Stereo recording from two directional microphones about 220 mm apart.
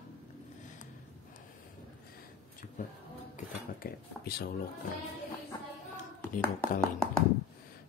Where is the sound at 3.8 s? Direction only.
45° left (ahead or behind).